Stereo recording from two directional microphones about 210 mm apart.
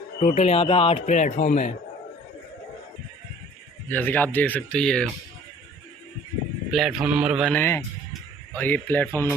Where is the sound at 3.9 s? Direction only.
10° left (ahead or behind).